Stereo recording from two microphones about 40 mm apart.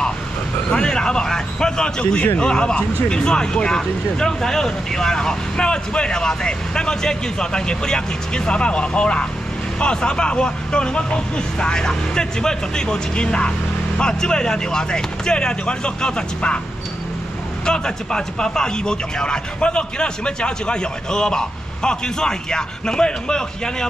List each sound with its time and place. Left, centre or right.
0.7 s a sound: left
2.3 s speech: left
17.6 s speech: centre